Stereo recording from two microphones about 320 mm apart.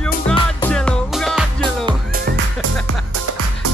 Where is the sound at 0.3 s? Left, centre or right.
Centre.